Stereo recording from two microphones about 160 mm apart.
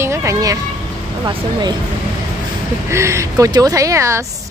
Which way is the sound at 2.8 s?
15° right (ahead or behind).